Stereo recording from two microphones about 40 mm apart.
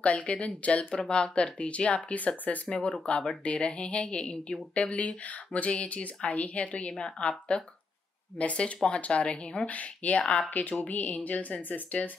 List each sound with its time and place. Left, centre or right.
0.0 s speech: left
2.1 s speech: left